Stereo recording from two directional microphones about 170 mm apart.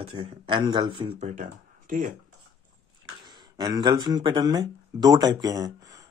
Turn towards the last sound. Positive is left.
turn(degrees=-20)  # may be behind; listen again after turning